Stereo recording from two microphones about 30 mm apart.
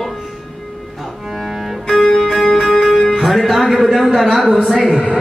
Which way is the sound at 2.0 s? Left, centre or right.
Left.